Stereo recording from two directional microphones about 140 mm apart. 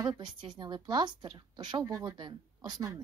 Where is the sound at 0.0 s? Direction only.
30° right (ahead or behind).